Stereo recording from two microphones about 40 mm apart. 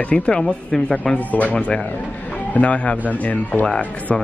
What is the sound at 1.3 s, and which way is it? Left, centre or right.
Speech, left.